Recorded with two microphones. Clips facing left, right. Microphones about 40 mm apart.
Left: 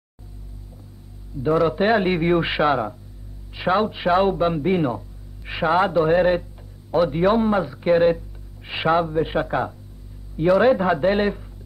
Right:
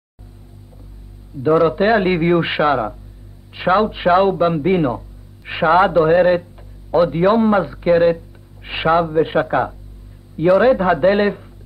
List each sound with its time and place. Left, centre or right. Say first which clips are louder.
1.4 s speech: right 5 dB; centre